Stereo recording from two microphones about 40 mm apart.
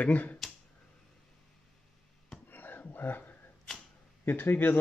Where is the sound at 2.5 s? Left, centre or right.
Left.